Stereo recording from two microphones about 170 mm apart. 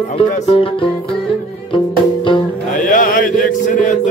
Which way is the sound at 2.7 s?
50° left (ahead or behind).